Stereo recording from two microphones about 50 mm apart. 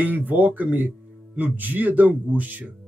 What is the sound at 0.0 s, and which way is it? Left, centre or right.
Speech, right.